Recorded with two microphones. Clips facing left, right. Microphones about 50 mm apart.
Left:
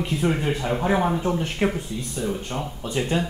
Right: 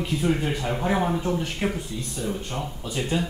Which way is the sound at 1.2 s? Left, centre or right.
Left.